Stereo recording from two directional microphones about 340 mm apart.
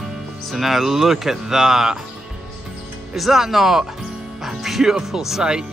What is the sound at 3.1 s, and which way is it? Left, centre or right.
Speech, centre.